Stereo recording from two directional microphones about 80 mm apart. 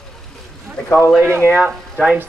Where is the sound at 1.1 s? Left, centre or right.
Right.